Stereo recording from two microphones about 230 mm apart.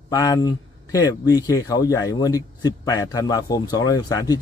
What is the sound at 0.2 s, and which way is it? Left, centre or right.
Speech, centre.